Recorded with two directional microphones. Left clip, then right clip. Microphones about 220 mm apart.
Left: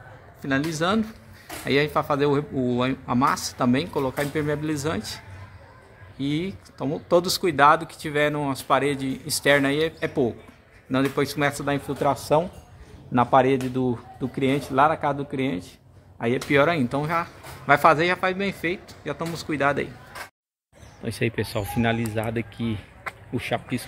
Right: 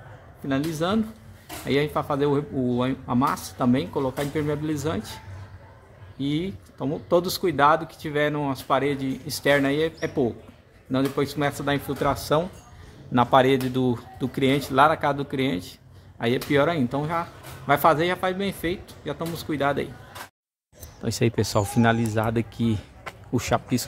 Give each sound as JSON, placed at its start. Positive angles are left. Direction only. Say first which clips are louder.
{"t": 0.4, "sound": "speech", "louder": "left 1 dB", "side_deg": -5}
{"t": 21.0, "sound": "speech", "louder": "right 2 dB", "side_deg": -15}